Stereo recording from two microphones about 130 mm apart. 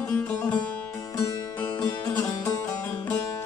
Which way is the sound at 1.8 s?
30° left (ahead or behind).